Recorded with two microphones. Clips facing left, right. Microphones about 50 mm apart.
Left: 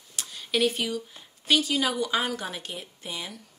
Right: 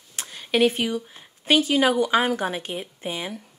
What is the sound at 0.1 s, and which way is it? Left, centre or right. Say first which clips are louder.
Speech: right 4 dB; right.